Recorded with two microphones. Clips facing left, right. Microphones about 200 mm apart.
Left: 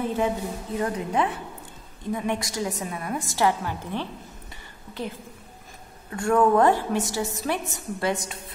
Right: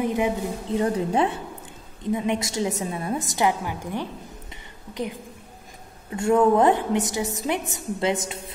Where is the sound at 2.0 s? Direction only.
20° right (ahead or behind).